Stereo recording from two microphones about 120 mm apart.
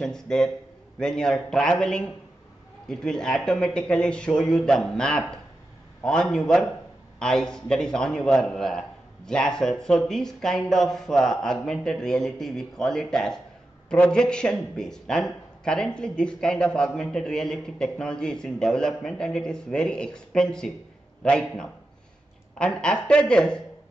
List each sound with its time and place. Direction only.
0.0 s a man's voice: 5° left (ahead or behind)